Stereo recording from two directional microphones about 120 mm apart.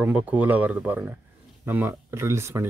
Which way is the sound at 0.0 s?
10° right (ahead or behind).